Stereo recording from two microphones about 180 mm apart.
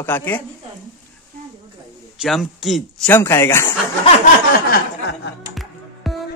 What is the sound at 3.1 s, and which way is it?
Speech, 15° left (ahead or behind).